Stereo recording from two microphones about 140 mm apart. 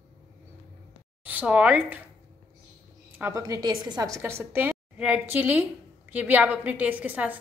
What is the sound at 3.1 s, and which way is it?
A woman's voice, 20° right (ahead or behind).